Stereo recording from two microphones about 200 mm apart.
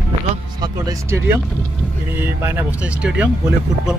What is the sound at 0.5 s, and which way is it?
Speech, 15° right (ahead or behind).